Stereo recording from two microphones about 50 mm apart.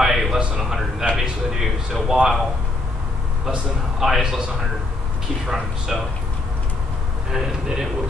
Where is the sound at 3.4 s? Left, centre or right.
Centre.